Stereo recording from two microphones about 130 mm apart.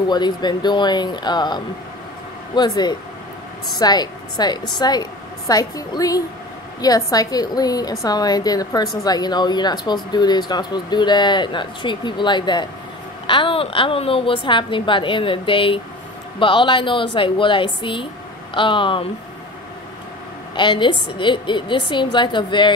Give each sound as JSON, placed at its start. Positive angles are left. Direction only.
{"t": 0.1, "sound": "a woman's voice", "side_deg": 35}
{"t": 20.5, "sound": "a woman's voice", "side_deg": 35}